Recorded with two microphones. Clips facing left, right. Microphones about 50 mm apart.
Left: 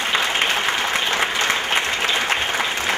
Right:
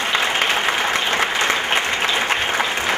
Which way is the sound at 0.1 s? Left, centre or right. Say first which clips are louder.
Right 1 dB; left.